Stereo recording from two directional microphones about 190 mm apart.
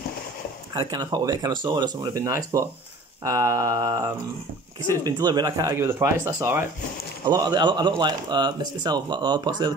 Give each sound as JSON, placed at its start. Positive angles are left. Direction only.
{"t": 0.7, "sound": "speech", "side_deg": -20}